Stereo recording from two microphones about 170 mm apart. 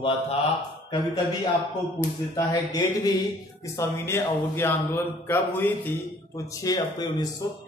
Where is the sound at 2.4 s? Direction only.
20° left (ahead or behind).